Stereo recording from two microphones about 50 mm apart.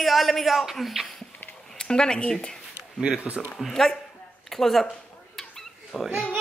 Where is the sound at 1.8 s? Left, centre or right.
Centre.